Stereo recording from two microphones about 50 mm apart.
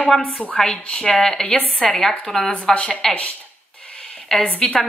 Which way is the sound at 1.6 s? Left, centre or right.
Centre.